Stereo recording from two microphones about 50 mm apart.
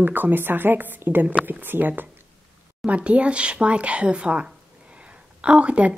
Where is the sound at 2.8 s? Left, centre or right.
Right.